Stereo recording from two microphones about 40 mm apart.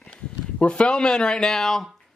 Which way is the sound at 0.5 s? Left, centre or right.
Left.